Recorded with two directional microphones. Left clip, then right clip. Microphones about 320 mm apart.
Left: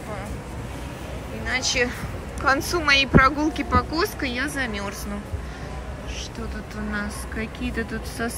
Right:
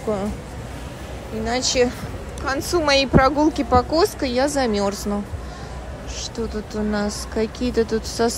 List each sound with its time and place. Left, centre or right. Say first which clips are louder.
1.4 s speech: right 4 dB; centre
6.7 s speech: right 4 dB; centre